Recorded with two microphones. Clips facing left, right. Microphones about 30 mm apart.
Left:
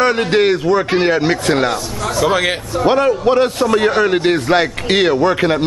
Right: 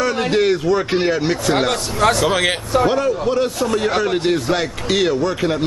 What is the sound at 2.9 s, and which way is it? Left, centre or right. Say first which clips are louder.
Speech: left 5 dB; left.